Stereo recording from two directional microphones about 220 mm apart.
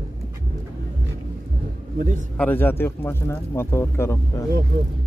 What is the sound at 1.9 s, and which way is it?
Speech, 35° right (ahead or behind).